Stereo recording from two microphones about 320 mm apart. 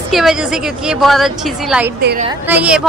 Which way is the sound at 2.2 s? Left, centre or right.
Centre.